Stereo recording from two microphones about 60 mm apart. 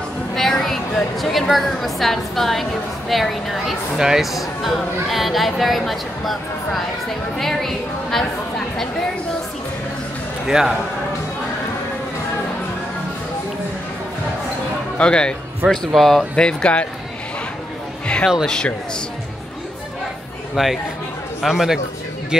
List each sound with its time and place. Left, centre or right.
0.4 s a woman's voice: centre
10.4 s a man's voice: centre
15.0 s a woman's voice: centre
15.9 s speech: centre
16.3 s a woman's voice: centre
18.0 s speech: centre
20.5 s speech: centre